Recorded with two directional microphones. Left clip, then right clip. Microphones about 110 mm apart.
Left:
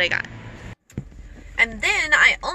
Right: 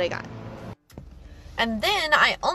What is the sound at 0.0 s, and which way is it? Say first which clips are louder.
Speech: left 6 dB; 30° right (ahead or behind).